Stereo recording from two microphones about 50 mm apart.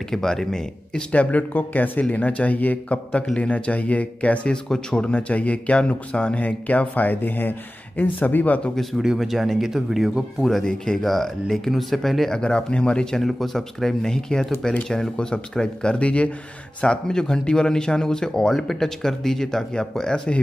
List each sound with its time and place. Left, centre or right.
0.1 s speech: centre
1.1 s speech: left
4.6 s speech: centre; by 8.5 s left
8.9 s speech: centre
10.4 s speech: centre
12.4 s speech: centre